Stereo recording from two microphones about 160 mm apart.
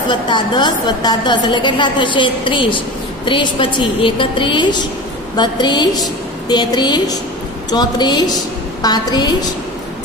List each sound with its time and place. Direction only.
0.1 s a woman's voice: 30° left (ahead or behind)